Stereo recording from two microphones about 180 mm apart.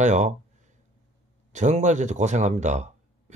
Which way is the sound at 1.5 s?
40° right (ahead or behind).